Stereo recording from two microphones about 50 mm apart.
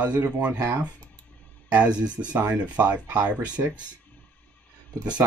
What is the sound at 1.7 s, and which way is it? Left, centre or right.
Speech, right.